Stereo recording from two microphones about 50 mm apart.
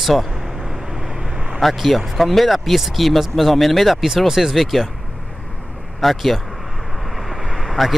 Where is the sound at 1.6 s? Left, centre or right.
Centre.